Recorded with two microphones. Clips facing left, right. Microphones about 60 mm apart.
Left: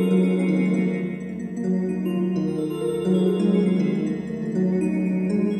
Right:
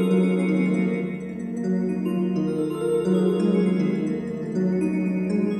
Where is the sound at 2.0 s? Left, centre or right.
Right.